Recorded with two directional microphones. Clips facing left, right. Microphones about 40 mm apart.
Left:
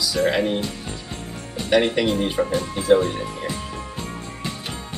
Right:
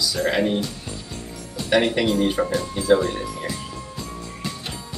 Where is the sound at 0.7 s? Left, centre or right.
Left.